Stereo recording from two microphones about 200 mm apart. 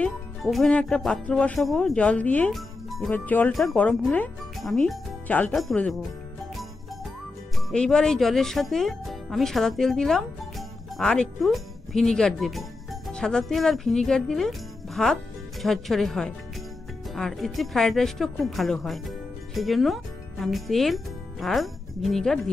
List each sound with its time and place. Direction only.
0.0 s speech: centre (ahead or behind)
7.7 s speech: 5° left (ahead or behind)